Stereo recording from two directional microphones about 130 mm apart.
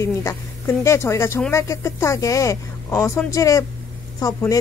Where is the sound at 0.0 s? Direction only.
20° left (ahead or behind).